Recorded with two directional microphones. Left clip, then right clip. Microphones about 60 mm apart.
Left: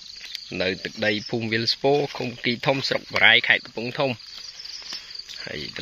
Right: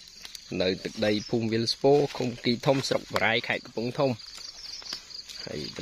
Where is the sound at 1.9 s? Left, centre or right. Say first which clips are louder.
Left 1 dB; right.